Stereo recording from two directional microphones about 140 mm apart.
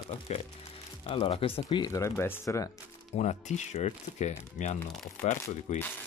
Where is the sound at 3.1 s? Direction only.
55° left (ahead or behind).